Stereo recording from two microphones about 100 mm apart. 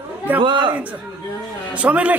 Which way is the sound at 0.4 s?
50° right (ahead or behind).